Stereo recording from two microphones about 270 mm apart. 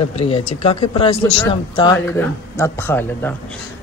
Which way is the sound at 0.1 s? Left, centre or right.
Left.